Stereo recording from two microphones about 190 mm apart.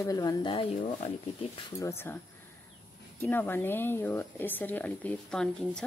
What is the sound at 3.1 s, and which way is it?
Speech, 10° left (ahead or behind).